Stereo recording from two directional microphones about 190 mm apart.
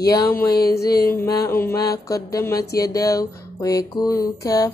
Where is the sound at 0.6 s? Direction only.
55° left (ahead or behind).